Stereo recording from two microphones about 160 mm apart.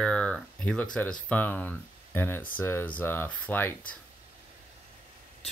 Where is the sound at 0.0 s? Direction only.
5° left (ahead or behind).